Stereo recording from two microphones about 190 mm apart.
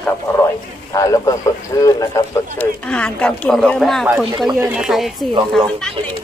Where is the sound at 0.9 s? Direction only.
15° left (ahead or behind).